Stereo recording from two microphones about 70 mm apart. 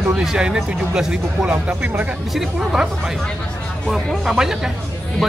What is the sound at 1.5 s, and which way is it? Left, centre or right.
Speech, right.